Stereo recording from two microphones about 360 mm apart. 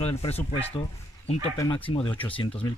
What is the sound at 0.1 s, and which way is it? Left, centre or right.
Speech, centre.